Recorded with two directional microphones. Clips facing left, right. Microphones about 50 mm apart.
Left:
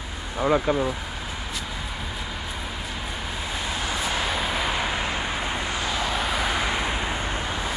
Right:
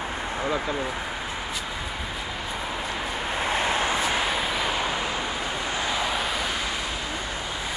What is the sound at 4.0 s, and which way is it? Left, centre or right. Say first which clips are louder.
Vehicle: right 1 dB; centre.